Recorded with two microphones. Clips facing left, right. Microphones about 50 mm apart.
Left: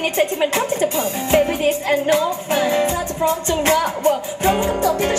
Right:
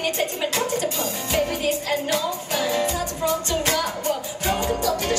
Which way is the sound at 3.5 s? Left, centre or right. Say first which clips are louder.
Left 6 dB; left.